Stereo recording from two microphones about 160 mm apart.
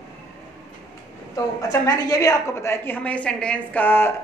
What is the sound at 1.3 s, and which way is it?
A woman's voice, 20° left (ahead or behind).